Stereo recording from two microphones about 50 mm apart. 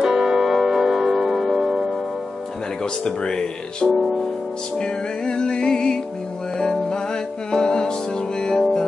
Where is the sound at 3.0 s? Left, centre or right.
Centre.